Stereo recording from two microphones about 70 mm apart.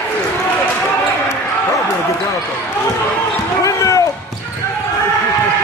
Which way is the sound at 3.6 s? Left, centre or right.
Left.